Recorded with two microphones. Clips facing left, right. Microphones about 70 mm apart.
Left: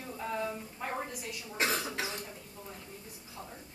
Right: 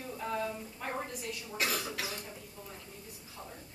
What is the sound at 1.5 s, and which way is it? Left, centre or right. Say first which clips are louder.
Speech: left 3 dB; left.